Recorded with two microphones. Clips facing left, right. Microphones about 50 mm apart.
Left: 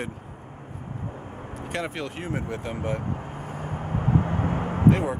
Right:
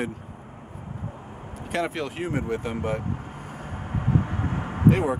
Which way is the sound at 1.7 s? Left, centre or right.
Centre.